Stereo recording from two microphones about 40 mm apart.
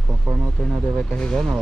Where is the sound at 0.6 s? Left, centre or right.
Centre.